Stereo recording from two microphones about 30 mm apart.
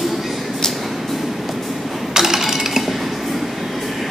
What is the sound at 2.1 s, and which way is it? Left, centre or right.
Coin, centre.